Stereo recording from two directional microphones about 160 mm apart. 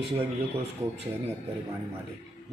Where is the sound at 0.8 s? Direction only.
10° right (ahead or behind).